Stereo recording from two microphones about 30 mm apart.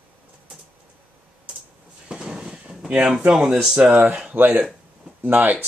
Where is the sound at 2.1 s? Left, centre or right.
Right.